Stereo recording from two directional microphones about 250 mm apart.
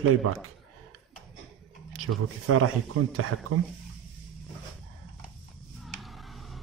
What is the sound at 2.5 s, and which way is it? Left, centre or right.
Speech, right.